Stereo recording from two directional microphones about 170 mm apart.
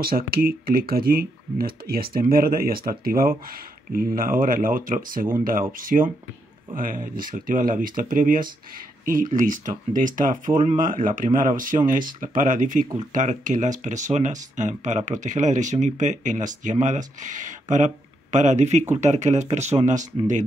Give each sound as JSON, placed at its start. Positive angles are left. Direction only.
{"t": 0.0, "sound": "speech", "side_deg": -60}